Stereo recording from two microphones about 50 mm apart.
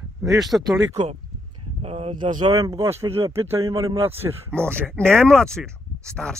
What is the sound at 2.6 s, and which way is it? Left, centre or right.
Speech, right.